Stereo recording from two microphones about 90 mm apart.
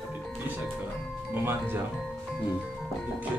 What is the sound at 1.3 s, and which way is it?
Speech, 25° right (ahead or behind).